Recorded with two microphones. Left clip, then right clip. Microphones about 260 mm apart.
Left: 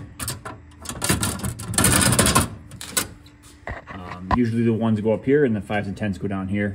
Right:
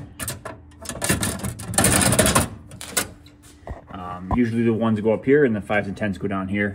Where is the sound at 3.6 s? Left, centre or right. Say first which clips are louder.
Left 4 dB; right.